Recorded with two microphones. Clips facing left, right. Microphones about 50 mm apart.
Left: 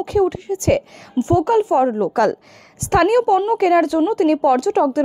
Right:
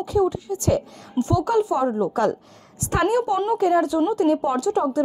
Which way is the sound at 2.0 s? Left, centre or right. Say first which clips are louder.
Left 4 dB; left.